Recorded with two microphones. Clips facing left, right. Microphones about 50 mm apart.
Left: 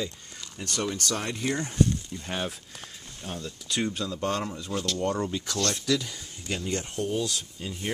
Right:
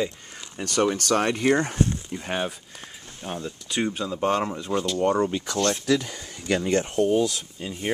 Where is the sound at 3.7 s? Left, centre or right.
Centre.